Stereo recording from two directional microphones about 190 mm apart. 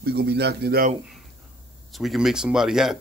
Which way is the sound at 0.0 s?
60° right (ahead or behind).